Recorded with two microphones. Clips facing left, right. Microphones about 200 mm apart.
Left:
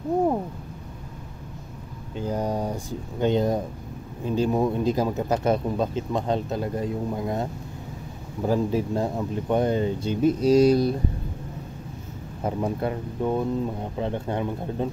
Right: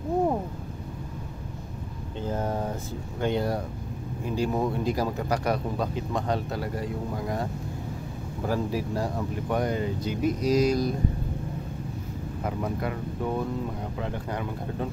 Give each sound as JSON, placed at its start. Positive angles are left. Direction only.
{"t": 2.1, "sound": "speech", "side_deg": 15}
{"t": 8.5, "sound": "speech", "side_deg": 25}
{"t": 12.4, "sound": "speech", "side_deg": 30}